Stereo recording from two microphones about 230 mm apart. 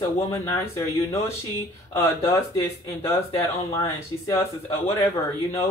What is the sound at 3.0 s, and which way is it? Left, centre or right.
Speech, centre.